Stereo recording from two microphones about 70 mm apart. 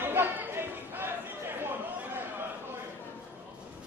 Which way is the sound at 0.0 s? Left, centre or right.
Right.